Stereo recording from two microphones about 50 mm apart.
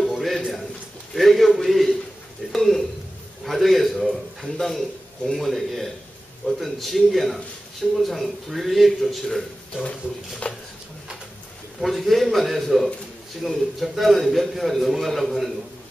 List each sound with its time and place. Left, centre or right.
0.0 s a sound: centre
1.1 s a man's voice: centre
2.5 s a sound: centre
6.4 s a man's voice: centre
10.4 s speech: left
11.8 s a man's voice: centre